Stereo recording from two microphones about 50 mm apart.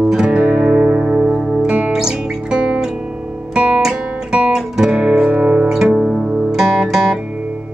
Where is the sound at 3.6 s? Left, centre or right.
Right.